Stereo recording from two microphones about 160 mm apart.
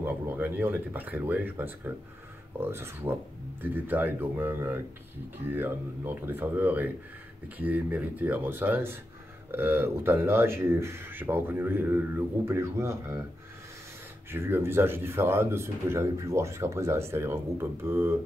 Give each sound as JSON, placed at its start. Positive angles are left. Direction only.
{"t": 0.0, "sound": "speech", "side_deg": -10}
{"t": 14.3, "sound": "speech", "side_deg": -15}